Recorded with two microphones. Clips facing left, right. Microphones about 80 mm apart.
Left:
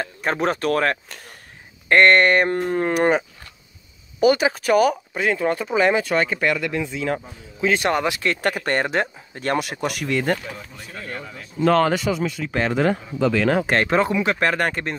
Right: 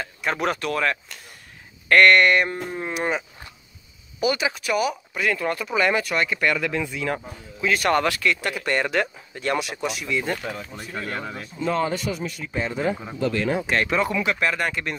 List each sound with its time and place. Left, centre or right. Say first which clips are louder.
0.0 s speech: left 3 dB; left
1.9 s speech: left 1 dB; left
2.6 s speech: left 8 dB; left
5.2 s speech: left 3 dB; left
6.5 s speech: left 1 dB; centre
6.8 s speech: left 2 dB; left
8.2 s speech: left 2 dB; left
8.8 s speech: left 1 dB; left
10.8 s speech: right 3 dB; right
11.6 s speech: left 6 dB; left
13.7 s speech: left 3 dB; left